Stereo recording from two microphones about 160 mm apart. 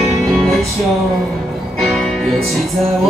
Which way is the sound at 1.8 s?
Centre (ahead or behind).